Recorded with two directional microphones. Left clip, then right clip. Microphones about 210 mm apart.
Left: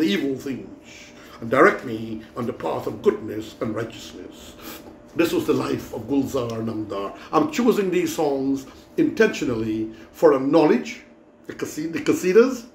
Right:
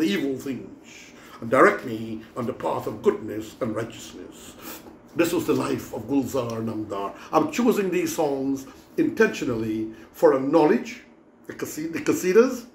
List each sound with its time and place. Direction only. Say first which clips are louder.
0.0 s a man's voice: left 2 dB; centre (ahead or behind)